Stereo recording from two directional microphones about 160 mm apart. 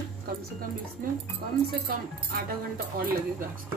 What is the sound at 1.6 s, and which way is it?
Speech, 70° right (ahead or behind).